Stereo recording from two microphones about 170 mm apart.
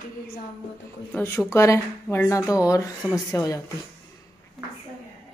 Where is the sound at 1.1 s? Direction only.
15° left (ahead or behind).